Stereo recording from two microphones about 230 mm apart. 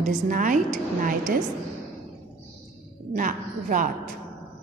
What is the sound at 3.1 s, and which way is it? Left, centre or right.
A woman's voice, right.